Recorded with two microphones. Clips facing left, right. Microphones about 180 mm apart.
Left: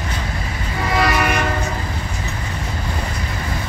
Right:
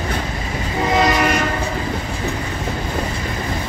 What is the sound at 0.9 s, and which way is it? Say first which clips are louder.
Train: right 2 dB; 20° right (ahead or behind).